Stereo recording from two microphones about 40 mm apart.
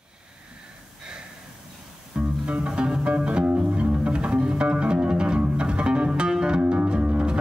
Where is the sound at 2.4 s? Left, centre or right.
Right.